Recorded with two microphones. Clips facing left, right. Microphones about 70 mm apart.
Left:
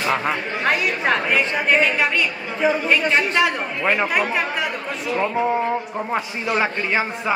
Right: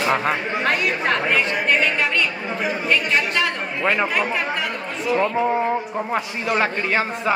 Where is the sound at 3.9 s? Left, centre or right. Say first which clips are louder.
Left 1 dB; centre.